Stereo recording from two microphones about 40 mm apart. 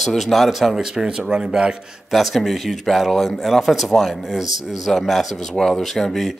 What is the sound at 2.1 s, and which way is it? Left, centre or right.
A man's voice, centre.